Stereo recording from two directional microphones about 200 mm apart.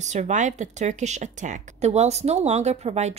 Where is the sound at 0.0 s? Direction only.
35° right (ahead or behind).